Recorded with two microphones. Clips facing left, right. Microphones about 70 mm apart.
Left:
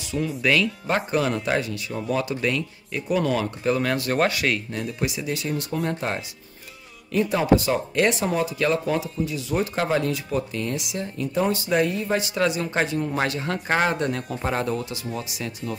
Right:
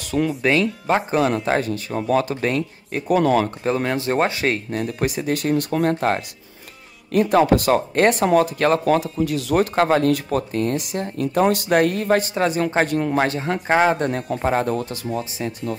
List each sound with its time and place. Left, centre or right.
0.4 s speech: right
3.8 s a man's voice: right
4.7 s speech: right
11.4 s speech: right
12.2 s speech: right
12.8 s speech: right
13.1 s a man's voice: right
13.9 s speech: right
15.1 s a man's voice: right